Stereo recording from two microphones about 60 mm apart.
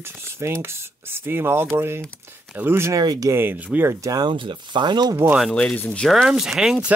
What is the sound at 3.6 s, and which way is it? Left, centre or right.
Speech, right.